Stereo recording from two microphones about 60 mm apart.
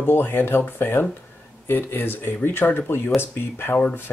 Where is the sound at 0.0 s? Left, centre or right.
Left.